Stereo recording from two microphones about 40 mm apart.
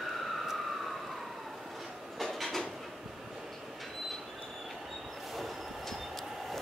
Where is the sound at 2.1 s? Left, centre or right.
Centre.